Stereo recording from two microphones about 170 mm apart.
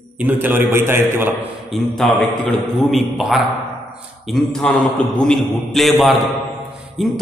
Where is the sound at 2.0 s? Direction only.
Centre (ahead or behind).